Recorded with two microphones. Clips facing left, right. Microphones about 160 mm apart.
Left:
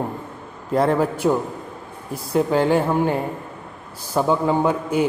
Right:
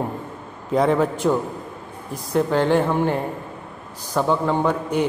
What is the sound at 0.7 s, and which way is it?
A man's voice, centre (ahead or behind).